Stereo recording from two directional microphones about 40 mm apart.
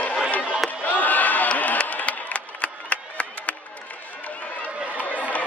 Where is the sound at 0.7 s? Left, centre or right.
Left.